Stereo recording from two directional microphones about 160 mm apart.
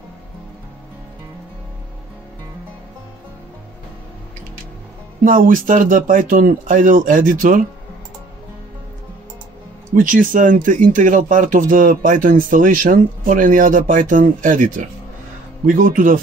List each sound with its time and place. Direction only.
5.2 s speech: 55° right (ahead or behind)
9.9 s speech: 55° right (ahead or behind)